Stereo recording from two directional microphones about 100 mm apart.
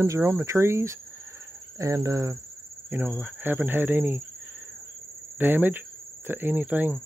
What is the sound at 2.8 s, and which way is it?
Speech, 20° right (ahead or behind).